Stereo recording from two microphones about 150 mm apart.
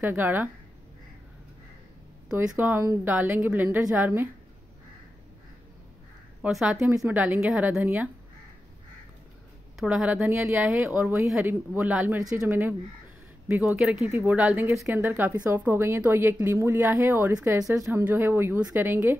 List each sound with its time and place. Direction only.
0.0 s speech: 15° right (ahead or behind)
2.3 s speech: 15° right (ahead or behind)
6.4 s speech: 10° right (ahead or behind)
9.8 s speech: 5° right (ahead or behind)
12.2 s a woman's voice: 20° right (ahead or behind)